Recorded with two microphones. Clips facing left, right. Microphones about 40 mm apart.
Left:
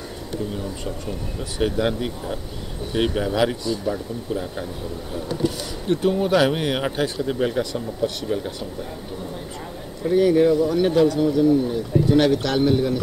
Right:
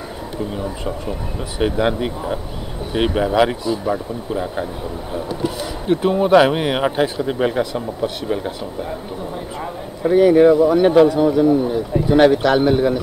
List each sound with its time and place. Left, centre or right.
0.6 s speech: right
10.0 s speech: right